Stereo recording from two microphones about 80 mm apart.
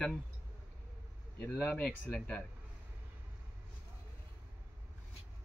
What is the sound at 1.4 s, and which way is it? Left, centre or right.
Speech, centre.